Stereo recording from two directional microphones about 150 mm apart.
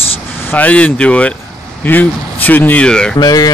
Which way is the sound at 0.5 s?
10° left (ahead or behind).